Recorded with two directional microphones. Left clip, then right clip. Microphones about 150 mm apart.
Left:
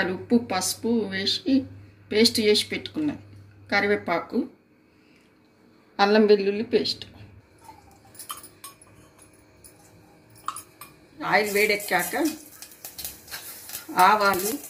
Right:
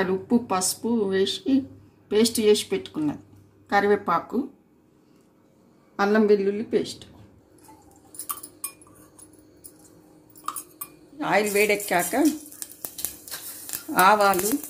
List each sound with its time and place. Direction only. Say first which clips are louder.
0.0 s speech: even; 50° right (ahead or behind)
5.9 s speech: left 2 dB; 50° right (ahead or behind)
11.1 s a woman's voice: even; 90° right
13.9 s a woman's voice: right 1 dB; 90° right